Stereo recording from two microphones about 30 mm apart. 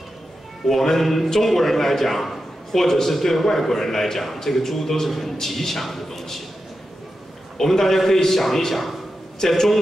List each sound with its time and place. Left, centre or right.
0.7 s a man's voice: centre
7.5 s a man's voice: centre